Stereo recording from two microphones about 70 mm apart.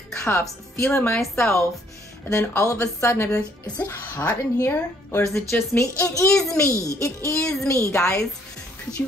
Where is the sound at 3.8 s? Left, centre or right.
Left.